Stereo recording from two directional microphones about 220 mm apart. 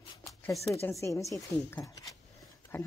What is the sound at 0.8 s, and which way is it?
Speech, 10° left (ahead or behind).